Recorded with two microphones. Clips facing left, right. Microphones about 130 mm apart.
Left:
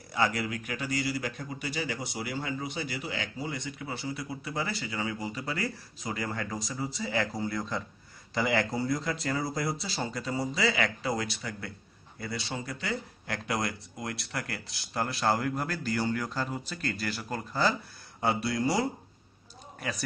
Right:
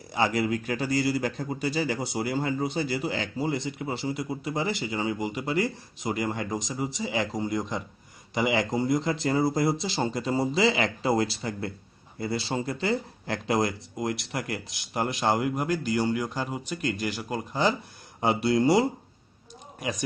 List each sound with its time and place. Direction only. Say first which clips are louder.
0.1 s a man's voice: right 4 dB; 25° right (ahead or behind)